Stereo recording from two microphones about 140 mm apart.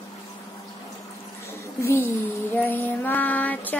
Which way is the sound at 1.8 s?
15° left (ahead or behind).